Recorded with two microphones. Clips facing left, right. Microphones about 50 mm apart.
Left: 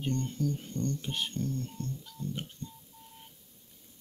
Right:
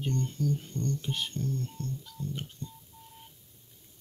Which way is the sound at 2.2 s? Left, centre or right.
Left.